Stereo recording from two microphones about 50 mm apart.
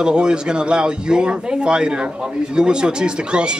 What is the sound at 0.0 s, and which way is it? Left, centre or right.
Speech, centre.